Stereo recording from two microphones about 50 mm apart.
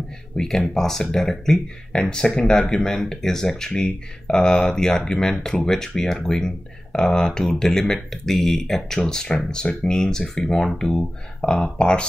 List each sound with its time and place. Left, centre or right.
0.4 s speech: centre